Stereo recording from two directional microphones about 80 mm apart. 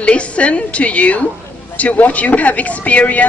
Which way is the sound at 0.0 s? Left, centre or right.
Centre.